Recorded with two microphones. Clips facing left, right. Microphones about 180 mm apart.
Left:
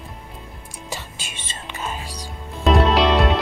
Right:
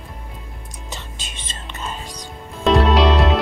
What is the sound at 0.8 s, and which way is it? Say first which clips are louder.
Music: left 3 dB; 10° left (ahead or behind).